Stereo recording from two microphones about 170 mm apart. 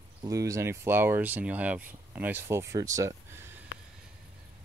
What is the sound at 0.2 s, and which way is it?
Speech, 20° right (ahead or behind).